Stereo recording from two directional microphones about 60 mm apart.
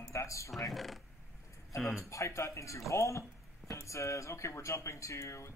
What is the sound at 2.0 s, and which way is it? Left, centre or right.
Speech, left.